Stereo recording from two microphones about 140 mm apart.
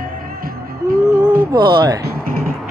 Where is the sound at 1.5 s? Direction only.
35° right (ahead or behind).